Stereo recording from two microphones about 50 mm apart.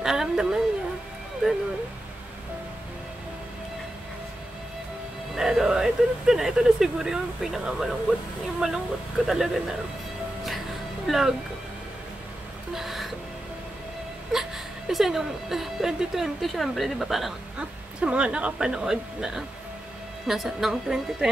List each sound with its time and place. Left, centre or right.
0.0 s a sound: centre
1.4 s speech: centre
5.3 s speech: centre
11.1 s a woman's voice: centre
12.7 s music: centre
14.9 s a woman's voice: centre
17.6 s speech: right